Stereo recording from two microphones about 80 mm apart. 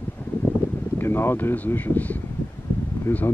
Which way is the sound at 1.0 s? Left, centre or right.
Left.